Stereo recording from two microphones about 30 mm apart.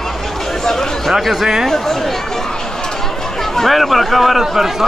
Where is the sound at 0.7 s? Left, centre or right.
Centre.